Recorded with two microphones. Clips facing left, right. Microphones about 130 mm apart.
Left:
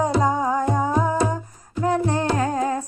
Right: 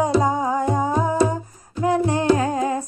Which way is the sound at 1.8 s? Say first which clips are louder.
Right 3 dB; 15° right (ahead or behind).